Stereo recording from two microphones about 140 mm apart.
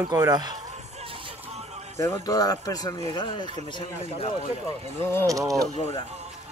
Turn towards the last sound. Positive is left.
turn(degrees=-25)  # may be behind; listen again after turning